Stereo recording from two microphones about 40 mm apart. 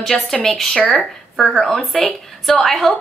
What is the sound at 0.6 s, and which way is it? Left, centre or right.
Speech, centre.